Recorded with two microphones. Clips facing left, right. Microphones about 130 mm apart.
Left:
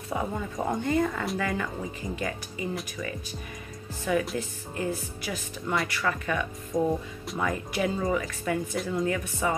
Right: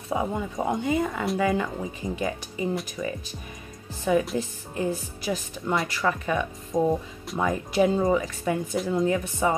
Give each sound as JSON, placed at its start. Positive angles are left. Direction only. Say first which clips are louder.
{"t": 0.1, "sound": "speech", "louder": "right 4 dB", "side_deg": -15}
{"t": 1.4, "sound": "speech", "louder": "right 5 dB", "side_deg": -20}